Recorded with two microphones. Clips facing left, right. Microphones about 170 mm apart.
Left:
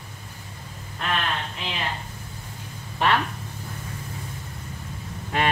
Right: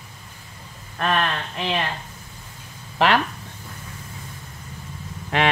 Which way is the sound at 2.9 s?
90° right.